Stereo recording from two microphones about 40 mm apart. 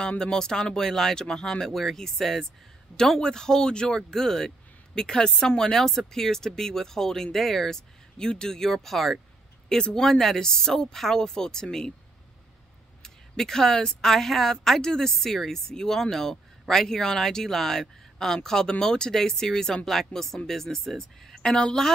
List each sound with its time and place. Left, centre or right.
0.2 s speech: centre
13.0 s a woman's voice: centre
21.4 s speech: centre